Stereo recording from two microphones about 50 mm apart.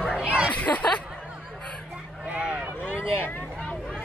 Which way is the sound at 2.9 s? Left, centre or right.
Left.